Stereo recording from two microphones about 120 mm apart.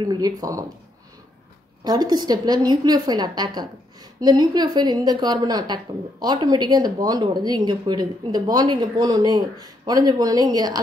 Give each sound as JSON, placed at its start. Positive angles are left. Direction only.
{"t": 0.0, "sound": "speech", "side_deg": -35}
{"t": 1.9, "sound": "a woman's voice", "side_deg": -35}